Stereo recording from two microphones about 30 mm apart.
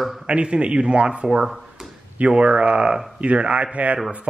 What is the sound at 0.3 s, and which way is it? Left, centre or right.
Speech, right.